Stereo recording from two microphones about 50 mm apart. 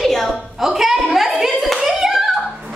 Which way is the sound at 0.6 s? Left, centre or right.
Centre.